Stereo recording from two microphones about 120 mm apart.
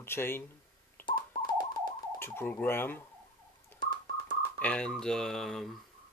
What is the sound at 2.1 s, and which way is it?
Speech, 20° left (ahead or behind).